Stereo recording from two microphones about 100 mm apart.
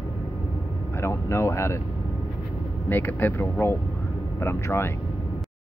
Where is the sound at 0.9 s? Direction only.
25° left (ahead or behind).